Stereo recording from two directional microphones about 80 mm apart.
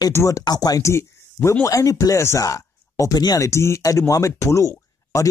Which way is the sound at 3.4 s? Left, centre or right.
Left.